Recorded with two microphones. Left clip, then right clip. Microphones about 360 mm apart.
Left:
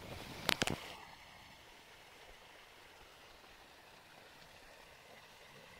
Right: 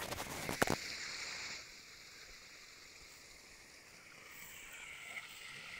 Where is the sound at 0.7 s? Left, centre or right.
Centre.